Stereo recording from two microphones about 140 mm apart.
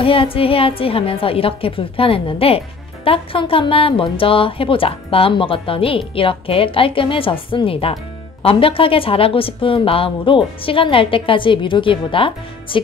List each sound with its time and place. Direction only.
0.0 s a woman's voice: 40° left (ahead or behind)